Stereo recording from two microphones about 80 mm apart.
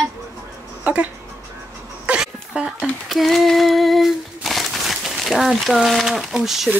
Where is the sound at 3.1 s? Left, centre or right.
Centre.